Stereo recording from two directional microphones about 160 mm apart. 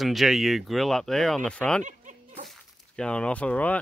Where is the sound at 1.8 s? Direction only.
50° right (ahead or behind).